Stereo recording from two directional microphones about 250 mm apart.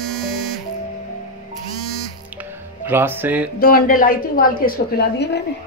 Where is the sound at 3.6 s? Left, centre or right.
Left.